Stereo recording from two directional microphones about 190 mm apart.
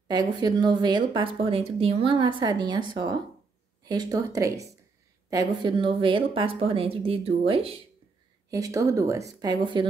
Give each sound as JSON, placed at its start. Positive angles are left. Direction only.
{"t": 0.1, "sound": "speech", "side_deg": -20}
{"t": 8.5, "sound": "a woman's voice", "side_deg": -20}